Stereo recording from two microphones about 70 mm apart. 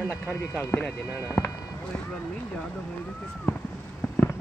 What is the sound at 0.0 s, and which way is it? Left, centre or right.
Speech, left.